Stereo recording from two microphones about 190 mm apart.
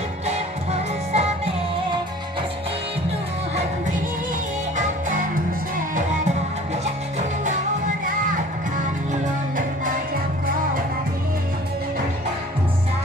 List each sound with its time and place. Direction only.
0.3 s music: 35° right (ahead or behind)
6.8 s music: 40° right (ahead or behind)